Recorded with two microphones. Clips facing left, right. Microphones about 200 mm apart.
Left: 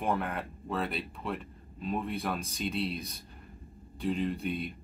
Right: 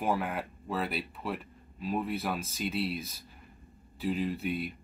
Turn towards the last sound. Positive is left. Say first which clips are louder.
# even
turn(degrees=-5)  # may be behind; listen again after turning